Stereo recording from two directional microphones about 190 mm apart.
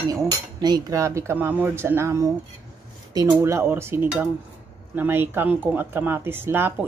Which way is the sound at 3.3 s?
15° right (ahead or behind).